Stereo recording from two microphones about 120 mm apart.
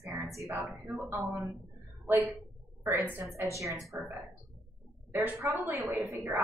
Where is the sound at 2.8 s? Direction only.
20° right (ahead or behind).